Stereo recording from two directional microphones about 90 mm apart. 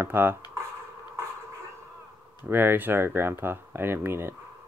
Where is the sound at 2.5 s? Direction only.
20° right (ahead or behind).